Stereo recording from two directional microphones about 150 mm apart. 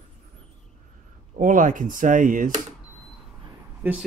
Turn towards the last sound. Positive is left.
turn(degrees=-15)  # may be behind; listen again after turning